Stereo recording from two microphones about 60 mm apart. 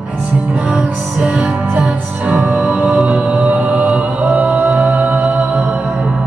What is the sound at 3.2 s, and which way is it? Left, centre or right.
Music, right.